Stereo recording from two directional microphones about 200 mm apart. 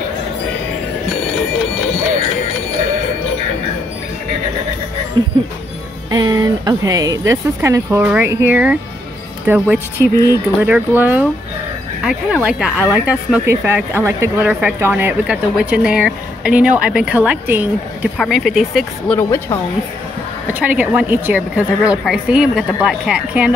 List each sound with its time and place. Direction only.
6.0 s speech: 20° right (ahead or behind); by 19.1 s centre (ahead or behind)
19.1 s speech: 10° left (ahead or behind)
20.5 s speech: 10° right (ahead or behind)